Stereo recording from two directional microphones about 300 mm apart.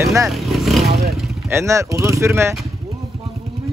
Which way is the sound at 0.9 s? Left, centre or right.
Right.